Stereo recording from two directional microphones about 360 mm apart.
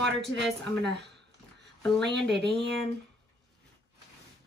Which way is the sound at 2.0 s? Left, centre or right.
Right.